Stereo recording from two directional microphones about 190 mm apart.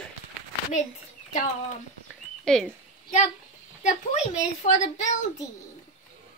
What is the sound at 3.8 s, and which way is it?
A woman's voice, 40° left (ahead or behind).